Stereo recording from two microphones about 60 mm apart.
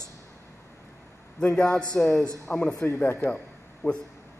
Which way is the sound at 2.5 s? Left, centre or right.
Left.